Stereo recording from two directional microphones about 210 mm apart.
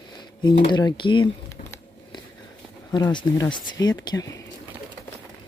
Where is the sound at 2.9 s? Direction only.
15° left (ahead or behind).